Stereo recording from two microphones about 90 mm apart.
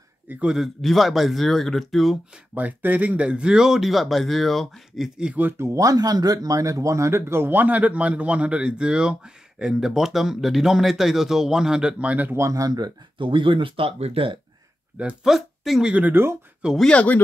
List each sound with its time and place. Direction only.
0.3 s speech: 10° right (ahead or behind)
0.6 s speech: centre (ahead or behind)
2.3 s speech: 15° right (ahead or behind)
5.4 s speech: 30° right (ahead or behind); by 12.4 s 15° right (ahead or behind)
12.4 s speech: 35° right (ahead or behind)
13.2 s speech: 65° right (ahead or behind); by 14.4 s 90° right
15.0 s speech: 5° right (ahead or behind)
15.9 s speech: 20° right (ahead or behind)
16.7 s speech: 10° left (ahead or behind)